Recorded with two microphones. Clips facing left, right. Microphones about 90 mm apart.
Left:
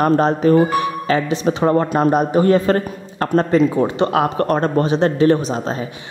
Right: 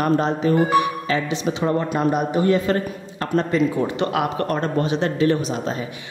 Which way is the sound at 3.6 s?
30° left (ahead or behind).